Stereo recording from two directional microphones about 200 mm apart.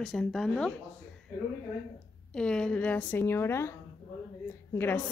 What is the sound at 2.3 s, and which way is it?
Speech, 5° left (ahead or behind).